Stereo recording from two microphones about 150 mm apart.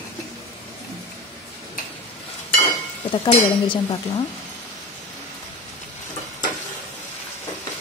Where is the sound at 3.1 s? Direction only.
30° left (ahead or behind).